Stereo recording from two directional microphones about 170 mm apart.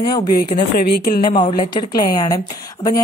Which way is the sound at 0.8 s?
65° left (ahead or behind).